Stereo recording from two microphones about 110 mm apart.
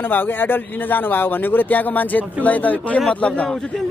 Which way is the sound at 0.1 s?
15° left (ahead or behind).